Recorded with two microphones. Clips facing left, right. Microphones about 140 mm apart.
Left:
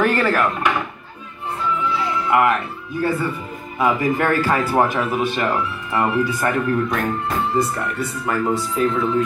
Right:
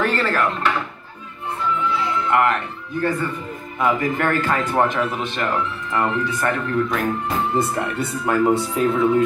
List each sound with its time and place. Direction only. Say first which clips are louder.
0.0 s speech: left 3 dB; 10° left (ahead or behind)
2.2 s speech: left 2 dB; 5° left (ahead or behind)
7.5 s speech: even; 25° right (ahead or behind)
8.8 s music: right 2 dB; 15° right (ahead or behind)